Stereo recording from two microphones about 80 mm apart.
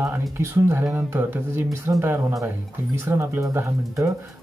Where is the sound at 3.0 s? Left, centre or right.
Right.